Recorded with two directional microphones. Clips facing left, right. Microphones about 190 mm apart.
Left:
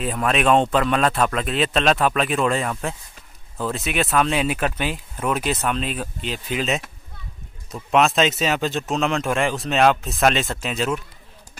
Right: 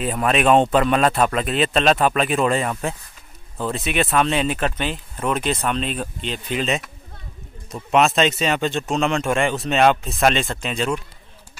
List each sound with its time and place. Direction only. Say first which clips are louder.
0.0 s speech: right 2 dB; centre (ahead or behind)